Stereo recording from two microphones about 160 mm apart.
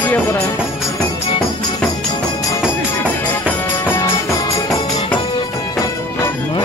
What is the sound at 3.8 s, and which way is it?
Music, 15° left (ahead or behind).